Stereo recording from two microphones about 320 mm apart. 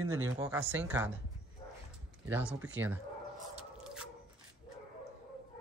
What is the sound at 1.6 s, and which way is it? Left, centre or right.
Dog, centre.